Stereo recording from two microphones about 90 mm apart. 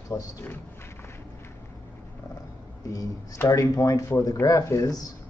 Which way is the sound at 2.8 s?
40° left (ahead or behind).